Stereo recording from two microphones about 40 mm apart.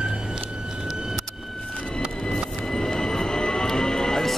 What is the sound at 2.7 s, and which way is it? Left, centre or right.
Music, centre.